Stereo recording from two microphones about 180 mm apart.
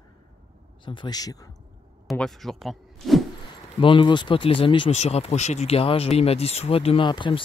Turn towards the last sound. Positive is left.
turn(degrees=25)  # may be behind; listen again after turning